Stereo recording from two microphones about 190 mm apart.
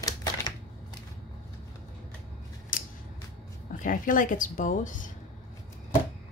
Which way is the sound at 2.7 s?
45° left (ahead or behind).